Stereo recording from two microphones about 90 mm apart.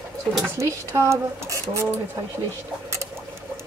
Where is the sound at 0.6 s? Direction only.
30° right (ahead or behind).